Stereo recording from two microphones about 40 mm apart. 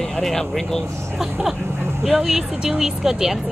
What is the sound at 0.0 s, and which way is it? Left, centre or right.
Speech, centre.